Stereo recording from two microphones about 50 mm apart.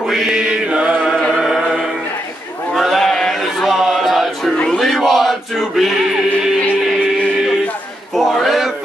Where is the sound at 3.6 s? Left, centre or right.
Centre.